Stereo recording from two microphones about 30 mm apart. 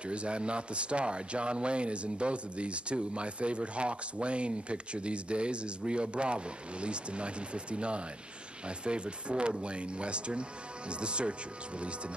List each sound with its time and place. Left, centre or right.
0.0 s speech: right